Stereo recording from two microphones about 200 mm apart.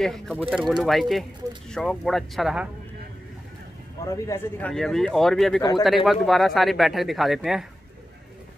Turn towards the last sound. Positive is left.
turn(degrees=0)  # may be behind; listen again after turning